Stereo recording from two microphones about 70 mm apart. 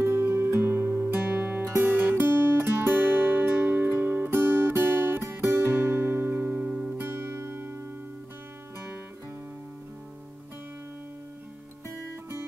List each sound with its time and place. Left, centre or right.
0.0 s music: right; by 7.0 s centre
7.0 s music: right